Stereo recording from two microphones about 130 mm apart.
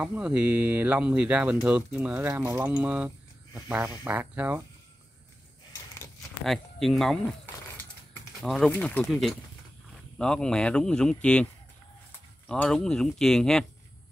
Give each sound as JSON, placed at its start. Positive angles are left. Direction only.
{"t": 0.0, "sound": "speech", "side_deg": -10}
{"t": 6.4, "sound": "speech", "side_deg": 0}
{"t": 8.4, "sound": "speech", "side_deg": 0}
{"t": 12.4, "sound": "speech", "side_deg": 5}